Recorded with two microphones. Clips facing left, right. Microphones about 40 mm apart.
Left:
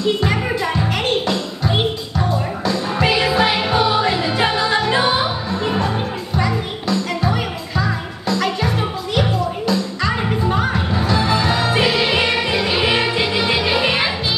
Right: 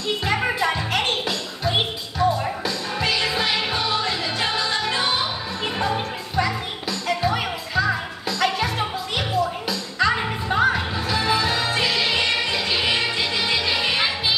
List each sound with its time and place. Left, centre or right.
0.4 s music: centre
2.7 s music: centre
5.8 s music: centre